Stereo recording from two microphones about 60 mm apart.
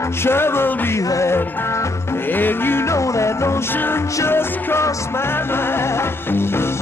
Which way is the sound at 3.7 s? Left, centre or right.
Left.